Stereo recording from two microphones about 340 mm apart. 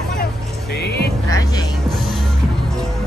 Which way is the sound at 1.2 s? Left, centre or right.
Centre.